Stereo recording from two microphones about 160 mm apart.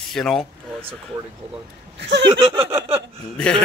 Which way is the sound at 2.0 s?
90° right.